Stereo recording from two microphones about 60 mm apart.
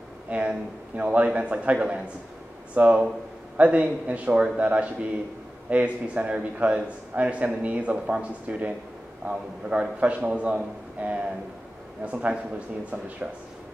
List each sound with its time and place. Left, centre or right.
0.3 s a man's voice: right